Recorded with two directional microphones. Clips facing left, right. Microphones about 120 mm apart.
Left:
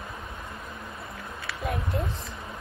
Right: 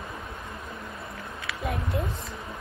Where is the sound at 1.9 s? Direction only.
Centre (ahead or behind).